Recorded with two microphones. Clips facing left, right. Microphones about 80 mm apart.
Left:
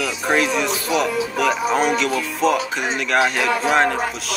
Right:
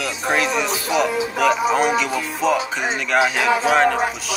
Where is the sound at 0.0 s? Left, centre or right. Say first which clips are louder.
Left 1 dB; centre.